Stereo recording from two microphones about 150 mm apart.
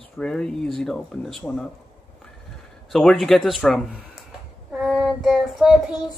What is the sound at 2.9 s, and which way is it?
Child singing, 5° left (ahead or behind).